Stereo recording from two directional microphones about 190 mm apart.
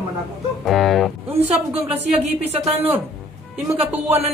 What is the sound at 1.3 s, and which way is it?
Speech, 30° right (ahead or behind).